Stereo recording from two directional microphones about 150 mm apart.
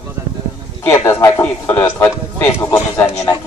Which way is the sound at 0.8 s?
20° left (ahead or behind).